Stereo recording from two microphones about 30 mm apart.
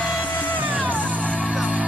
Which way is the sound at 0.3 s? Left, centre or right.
Left.